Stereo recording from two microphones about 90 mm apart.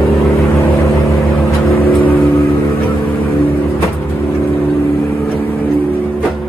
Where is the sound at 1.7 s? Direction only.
20° left (ahead or behind).